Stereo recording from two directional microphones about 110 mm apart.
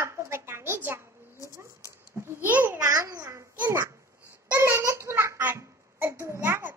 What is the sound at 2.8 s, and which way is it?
Speech, 35° right (ahead or behind).